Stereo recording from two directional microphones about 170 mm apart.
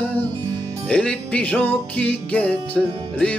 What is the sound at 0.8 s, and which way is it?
Music, 5° left (ahead or behind).